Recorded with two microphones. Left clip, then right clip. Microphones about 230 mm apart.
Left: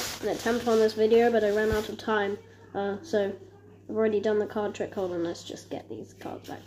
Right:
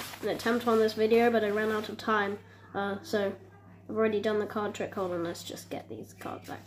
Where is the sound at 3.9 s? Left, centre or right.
Centre.